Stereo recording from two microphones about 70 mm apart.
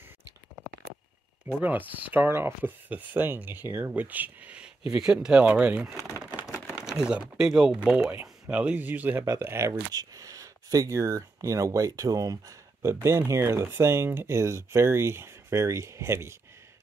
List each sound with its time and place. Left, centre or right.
1.6 s speech: right
2.9 s speech: right
8.1 s speech: right
9.4 s speech: right
9.9 s speech: right
12.8 s speech: right